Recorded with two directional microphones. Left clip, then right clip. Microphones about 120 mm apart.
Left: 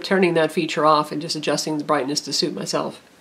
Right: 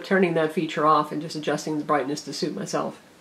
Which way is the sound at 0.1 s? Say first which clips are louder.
Left 3 dB; 45° left (ahead or behind).